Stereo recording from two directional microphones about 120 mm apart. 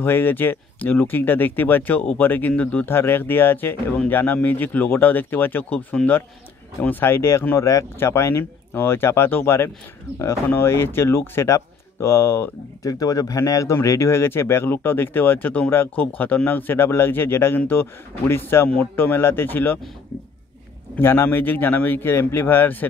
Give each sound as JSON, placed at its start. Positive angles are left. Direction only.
{"t": 0.0, "sound": "speech", "side_deg": 15}
{"t": 12.8, "sound": "speech", "side_deg": 30}
{"t": 20.9, "sound": "speech", "side_deg": 20}